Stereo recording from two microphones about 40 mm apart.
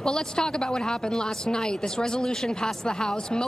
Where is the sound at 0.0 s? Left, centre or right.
Centre.